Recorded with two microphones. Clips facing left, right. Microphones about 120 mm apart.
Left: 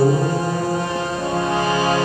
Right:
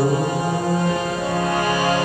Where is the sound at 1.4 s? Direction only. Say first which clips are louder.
Left 2 dB; 25° left (ahead or behind).